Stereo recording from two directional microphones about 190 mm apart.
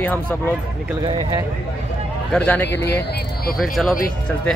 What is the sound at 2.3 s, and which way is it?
Speech, 5° left (ahead or behind).